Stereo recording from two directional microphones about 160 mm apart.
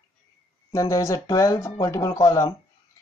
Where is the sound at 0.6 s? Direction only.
20° left (ahead or behind).